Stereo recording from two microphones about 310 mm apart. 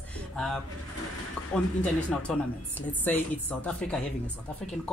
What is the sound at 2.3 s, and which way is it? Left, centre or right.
Speech, centre.